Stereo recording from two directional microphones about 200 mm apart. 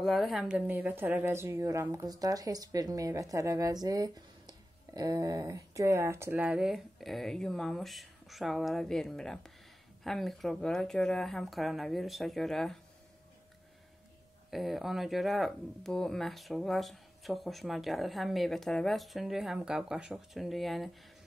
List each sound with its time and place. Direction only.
0.0 s a woman's voice: centre (ahead or behind)
14.5 s speech: centre (ahead or behind)